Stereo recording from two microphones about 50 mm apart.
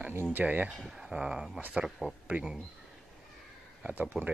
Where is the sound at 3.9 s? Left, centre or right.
Right.